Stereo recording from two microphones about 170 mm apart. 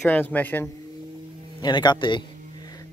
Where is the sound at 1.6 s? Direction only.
25° left (ahead or behind).